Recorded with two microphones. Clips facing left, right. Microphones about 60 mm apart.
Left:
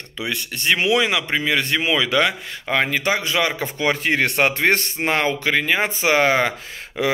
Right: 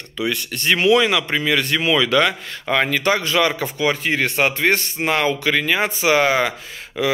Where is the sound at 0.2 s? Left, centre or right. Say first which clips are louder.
Right 3 dB; left.